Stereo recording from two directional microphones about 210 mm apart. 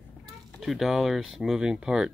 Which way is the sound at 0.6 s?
Centre (ahead or behind).